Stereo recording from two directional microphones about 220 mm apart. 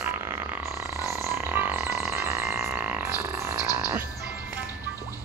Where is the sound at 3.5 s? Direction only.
15° left (ahead or behind).